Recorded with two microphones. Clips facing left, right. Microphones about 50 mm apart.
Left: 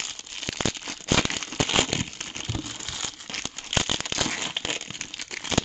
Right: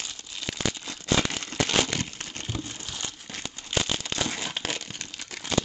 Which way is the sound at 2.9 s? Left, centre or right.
Left.